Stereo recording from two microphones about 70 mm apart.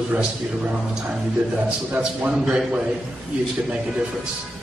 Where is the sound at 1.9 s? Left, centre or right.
Centre.